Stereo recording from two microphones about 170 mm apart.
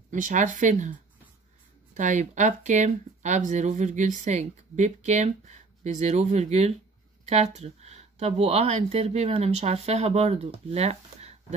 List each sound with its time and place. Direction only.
0.1 s speech: 50° right (ahead or behind)
2.0 s speech: 45° right (ahead or behind)
10.7 s a sound: 40° right (ahead or behind)